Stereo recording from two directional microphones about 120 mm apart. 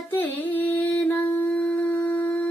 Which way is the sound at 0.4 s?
15° left (ahead or behind).